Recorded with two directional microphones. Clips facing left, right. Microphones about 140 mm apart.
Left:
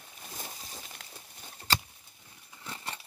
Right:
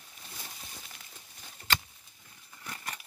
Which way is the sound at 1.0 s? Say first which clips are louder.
Left 4 dB; 90° left.